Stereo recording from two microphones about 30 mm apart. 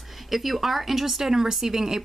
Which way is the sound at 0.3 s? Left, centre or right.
Centre.